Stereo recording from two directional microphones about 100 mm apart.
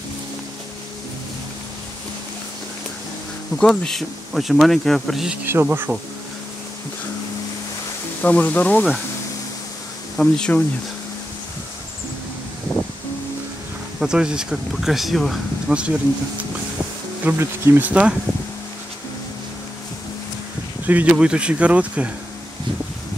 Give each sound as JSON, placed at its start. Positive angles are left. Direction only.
{"t": 3.5, "sound": "speech", "side_deg": 5}
{"t": 5.4, "sound": "speech", "side_deg": -20}
{"t": 8.2, "sound": "speech", "side_deg": 15}
{"t": 10.1, "sound": "speech", "side_deg": 5}
{"t": 12.7, "sound": "rustling leaves", "side_deg": 25}
{"t": 13.9, "sound": "speech", "side_deg": -5}
{"t": 15.7, "sound": "speech", "side_deg": -10}
{"t": 17.2, "sound": "speech", "side_deg": -15}
{"t": 20.8, "sound": "speech", "side_deg": -15}